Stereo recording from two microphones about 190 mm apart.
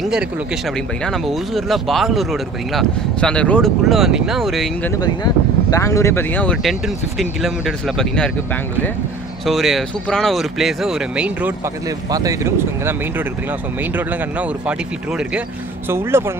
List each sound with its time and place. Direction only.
1.0 s speech: centre (ahead or behind)
5.0 s speech: 20° left (ahead or behind); by 8.3 s 5° left (ahead or behind)
9.5 s speech: centre (ahead or behind)
12.1 s speech: 20° right (ahead or behind)